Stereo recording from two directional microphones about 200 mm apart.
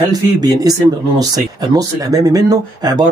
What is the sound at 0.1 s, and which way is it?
Speech, 20° right (ahead or behind).